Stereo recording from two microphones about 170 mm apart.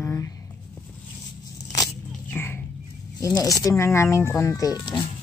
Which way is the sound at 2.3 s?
15° left (ahead or behind).